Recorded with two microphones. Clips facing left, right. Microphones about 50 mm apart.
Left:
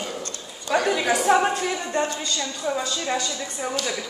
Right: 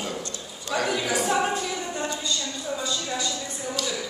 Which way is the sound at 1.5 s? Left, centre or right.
Left.